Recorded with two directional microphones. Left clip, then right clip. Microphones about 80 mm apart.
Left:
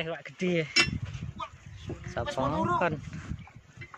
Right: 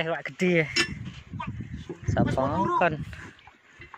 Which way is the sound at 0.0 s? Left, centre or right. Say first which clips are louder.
Right 6 dB; right.